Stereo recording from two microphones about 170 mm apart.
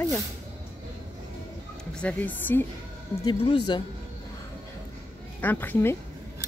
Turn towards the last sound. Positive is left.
turn(degrees=10)  # may be behind; listen again after turning